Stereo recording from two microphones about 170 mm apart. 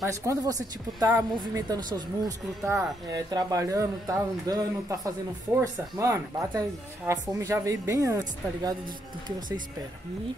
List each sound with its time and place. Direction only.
0.0 s speech: 20° right (ahead or behind)